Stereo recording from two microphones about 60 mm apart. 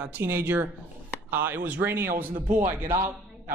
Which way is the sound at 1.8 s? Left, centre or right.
Right.